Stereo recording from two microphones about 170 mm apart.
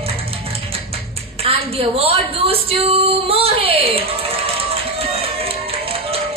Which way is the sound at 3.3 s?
35° right (ahead or behind).